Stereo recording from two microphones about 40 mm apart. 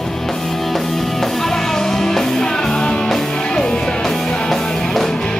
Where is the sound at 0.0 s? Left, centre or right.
Centre.